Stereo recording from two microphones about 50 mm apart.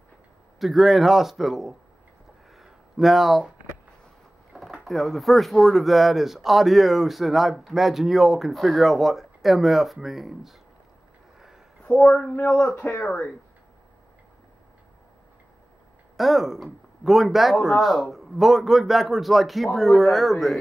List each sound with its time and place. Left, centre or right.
0.6 s speech: centre
2.5 s a sound: centre
4.5 s speech: centre
11.8 s speech: left
12.6 s speech: left
16.2 s speech: centre